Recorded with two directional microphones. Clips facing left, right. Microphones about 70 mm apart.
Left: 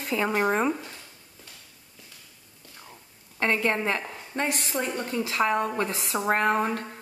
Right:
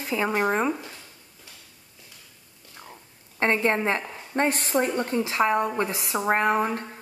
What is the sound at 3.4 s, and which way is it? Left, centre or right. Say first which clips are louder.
Speech: right 2 dB; right.